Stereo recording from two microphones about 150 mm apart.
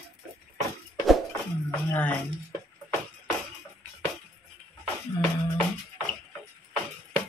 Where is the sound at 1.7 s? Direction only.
10° left (ahead or behind).